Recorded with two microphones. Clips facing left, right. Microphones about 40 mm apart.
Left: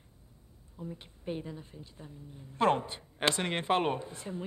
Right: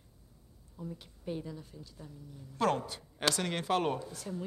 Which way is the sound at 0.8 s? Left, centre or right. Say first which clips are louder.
Left 1 dB; left.